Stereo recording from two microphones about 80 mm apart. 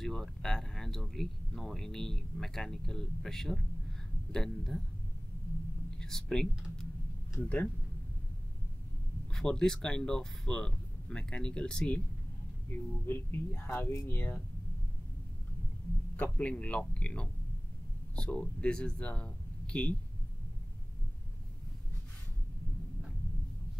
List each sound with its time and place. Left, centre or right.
0.0 s speech: centre
5.9 s speech: centre
9.3 s speech: centre
12.7 s speech: left
16.2 s speech: centre